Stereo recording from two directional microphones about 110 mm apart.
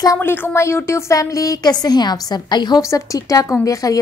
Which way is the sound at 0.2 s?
20° left (ahead or behind).